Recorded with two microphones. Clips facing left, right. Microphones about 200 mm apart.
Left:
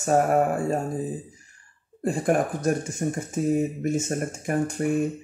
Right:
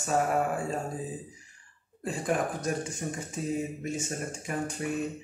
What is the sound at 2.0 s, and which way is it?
Speech, 50° left (ahead or behind).